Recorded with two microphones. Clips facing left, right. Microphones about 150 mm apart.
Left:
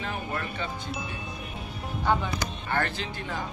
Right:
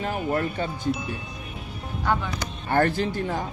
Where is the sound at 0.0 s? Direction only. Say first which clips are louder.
Right 7 dB; 40° right (ahead or behind).